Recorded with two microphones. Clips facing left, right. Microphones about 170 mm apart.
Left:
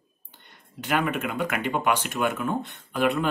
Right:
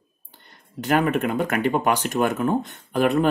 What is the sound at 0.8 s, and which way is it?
Speech, 40° right (ahead or behind).